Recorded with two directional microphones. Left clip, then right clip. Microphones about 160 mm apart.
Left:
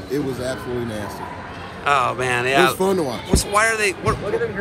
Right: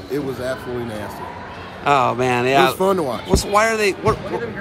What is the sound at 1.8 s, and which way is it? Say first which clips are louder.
Speech: right 2 dB; 40° right (ahead or behind).